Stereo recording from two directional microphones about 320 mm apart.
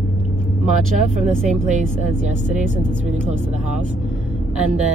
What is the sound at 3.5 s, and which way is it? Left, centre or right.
Speech, right.